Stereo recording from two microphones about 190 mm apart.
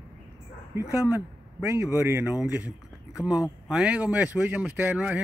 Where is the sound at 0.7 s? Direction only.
15° right (ahead or behind).